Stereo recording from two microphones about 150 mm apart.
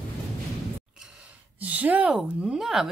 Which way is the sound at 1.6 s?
10° right (ahead or behind).